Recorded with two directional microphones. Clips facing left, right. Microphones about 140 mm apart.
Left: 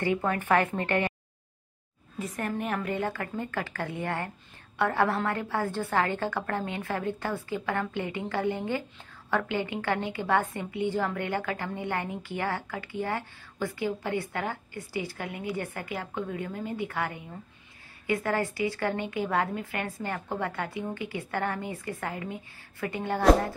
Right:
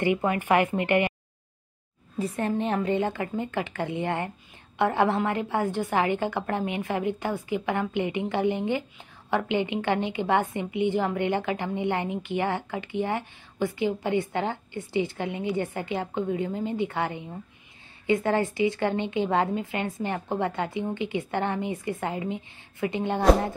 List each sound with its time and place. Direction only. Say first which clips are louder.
0.0 s a woman's voice: right 3 dB; 15° right (ahead or behind)
2.1 s a woman's voice: right 5 dB; 30° right (ahead or behind)